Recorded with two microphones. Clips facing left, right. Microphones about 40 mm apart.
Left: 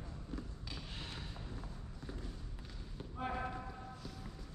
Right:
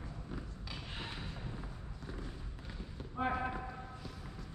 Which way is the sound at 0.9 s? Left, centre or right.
Right.